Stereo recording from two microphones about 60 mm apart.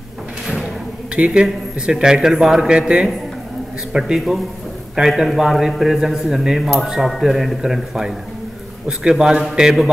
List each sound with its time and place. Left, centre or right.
1.1 s a man's voice: centre
5.0 s a man's voice: centre